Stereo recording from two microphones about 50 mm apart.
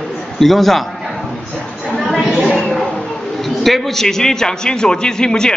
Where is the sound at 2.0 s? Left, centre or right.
Centre.